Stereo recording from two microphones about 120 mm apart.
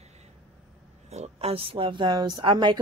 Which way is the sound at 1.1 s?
60° right (ahead or behind).